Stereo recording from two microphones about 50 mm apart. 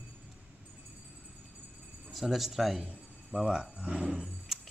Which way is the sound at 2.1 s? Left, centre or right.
Centre.